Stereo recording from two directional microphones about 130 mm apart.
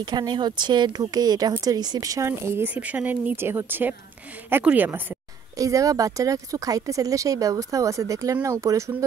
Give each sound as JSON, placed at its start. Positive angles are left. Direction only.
{"t": 0.0, "sound": "speech", "side_deg": -35}
{"t": 5.6, "sound": "speech", "side_deg": -25}